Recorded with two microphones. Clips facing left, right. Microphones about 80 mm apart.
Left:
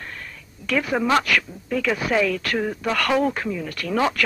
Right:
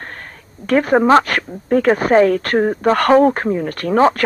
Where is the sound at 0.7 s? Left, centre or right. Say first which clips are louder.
Right 9 dB; right.